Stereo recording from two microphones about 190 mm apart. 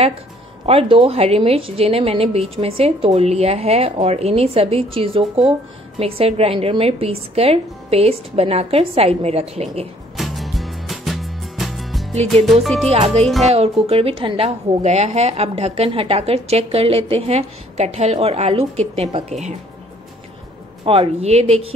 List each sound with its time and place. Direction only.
0.7 s a woman's voice: 30° right (ahead or behind)
10.1 s music: centre (ahead or behind)
12.8 s a woman's voice: 35° right (ahead or behind)
20.8 s a woman's voice: 30° right (ahead or behind)